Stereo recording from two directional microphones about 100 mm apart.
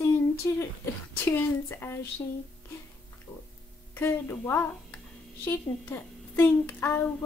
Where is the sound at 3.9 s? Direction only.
25° left (ahead or behind).